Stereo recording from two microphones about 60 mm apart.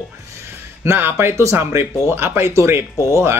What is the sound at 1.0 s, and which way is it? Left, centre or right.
Speech, right.